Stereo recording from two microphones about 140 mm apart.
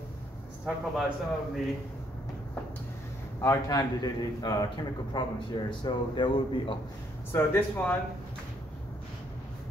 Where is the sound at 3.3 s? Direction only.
25° left (ahead or behind).